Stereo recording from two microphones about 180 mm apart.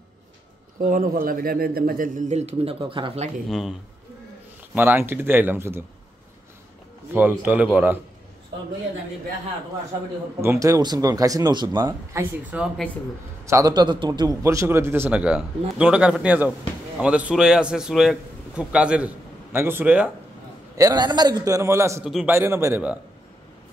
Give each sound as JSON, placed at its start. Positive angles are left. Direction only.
{"t": 0.7, "sound": "a man's voice", "side_deg": -50}
{"t": 3.4, "sound": "a man's voice", "side_deg": 0}
{"t": 4.7, "sound": "a man's voice", "side_deg": -10}
{"t": 7.2, "sound": "a man's voice", "side_deg": -10}
{"t": 10.4, "sound": "a man's voice", "side_deg": -15}
{"t": 20.7, "sound": "a man's voice", "side_deg": -20}